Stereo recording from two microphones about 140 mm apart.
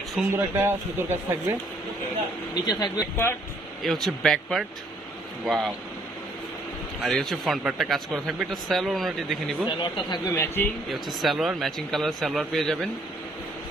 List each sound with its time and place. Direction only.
0.3 s speech: 15° right (ahead or behind)
2.5 s speech: 30° left (ahead or behind)
3.8 s speech: centre (ahead or behind)
7.0 s speech: centre (ahead or behind)
9.7 s speech: 30° left (ahead or behind)
10.3 s speech: 20° left (ahead or behind)
10.9 s speech: centre (ahead or behind)